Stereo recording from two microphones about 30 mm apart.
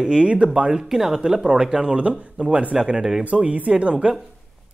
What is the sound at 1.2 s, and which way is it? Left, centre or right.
Speech, right.